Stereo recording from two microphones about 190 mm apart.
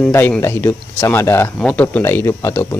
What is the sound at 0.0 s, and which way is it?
Speech, 10° left (ahead or behind).